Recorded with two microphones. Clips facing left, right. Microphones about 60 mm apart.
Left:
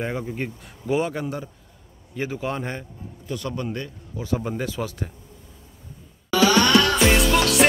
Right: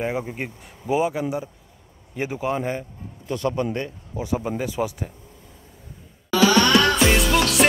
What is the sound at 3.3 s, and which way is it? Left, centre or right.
A man's voice, right.